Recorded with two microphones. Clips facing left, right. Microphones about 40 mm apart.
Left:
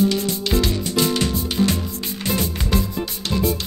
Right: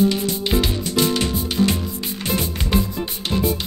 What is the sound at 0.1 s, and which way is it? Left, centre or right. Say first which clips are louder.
Music: even; right.